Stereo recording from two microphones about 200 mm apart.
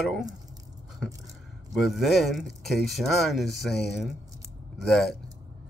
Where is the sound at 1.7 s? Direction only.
Centre (ahead or behind).